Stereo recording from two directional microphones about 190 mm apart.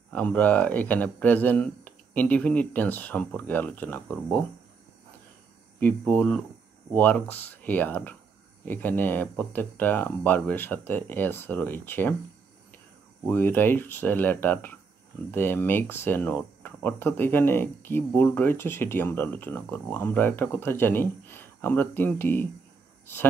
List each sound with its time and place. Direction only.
0.1 s speech: 5° left (ahead or behind)
5.8 s speech: 10° left (ahead or behind)
13.2 s speech: 10° left (ahead or behind)